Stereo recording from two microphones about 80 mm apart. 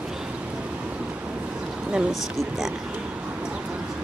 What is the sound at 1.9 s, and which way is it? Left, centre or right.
Speech, centre.